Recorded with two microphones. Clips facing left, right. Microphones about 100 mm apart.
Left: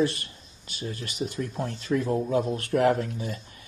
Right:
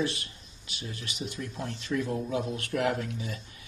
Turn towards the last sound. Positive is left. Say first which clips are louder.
# left 4 dB
turn(degrees=40)  # may be behind; listen again after turning